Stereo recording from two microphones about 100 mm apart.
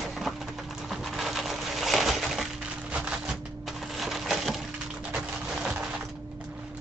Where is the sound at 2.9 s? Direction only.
10° right (ahead or behind).